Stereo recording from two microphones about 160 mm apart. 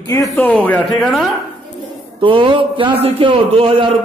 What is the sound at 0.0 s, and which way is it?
Speech, 20° left (ahead or behind).